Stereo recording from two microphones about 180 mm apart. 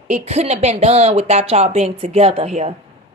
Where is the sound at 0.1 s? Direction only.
35° right (ahead or behind).